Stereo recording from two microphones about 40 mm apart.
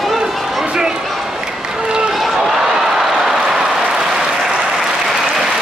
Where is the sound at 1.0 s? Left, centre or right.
Centre.